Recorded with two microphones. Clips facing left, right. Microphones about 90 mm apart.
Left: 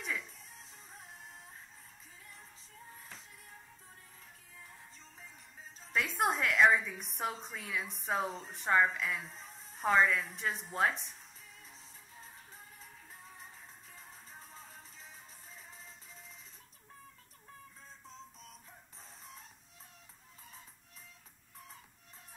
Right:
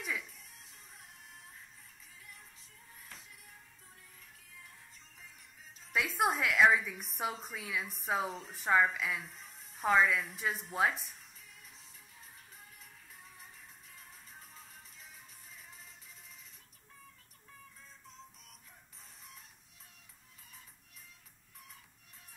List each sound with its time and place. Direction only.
0.0 s music: 5° right (ahead or behind)
0.3 s music: 30° left (ahead or behind)
2.9 s music: 30° left (ahead or behind)
4.9 s music: 35° left (ahead or behind)
5.9 s a woman's voice: centre (ahead or behind)
9.2 s music: 35° left (ahead or behind)
9.8 s a woman's voice: 5° right (ahead or behind)
11.6 s music: 30° left (ahead or behind)
18.5 s music: 30° left (ahead or behind)